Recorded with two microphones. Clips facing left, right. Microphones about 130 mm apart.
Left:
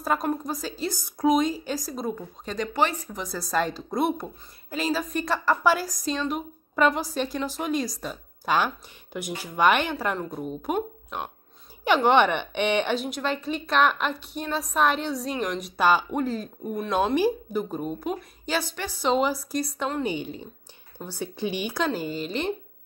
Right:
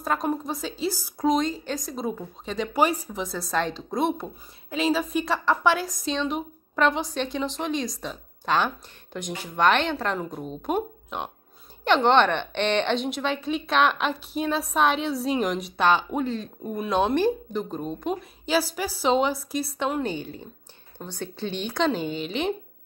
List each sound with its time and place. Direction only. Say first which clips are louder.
0.0 s speech: even; 5° left (ahead or behind)
1.3 s speech: left 2 dB; 10° left (ahead or behind)
20.0 s a woman's voice: left 1 dB; 15° left (ahead or behind); by 22.5 s centre (ahead or behind)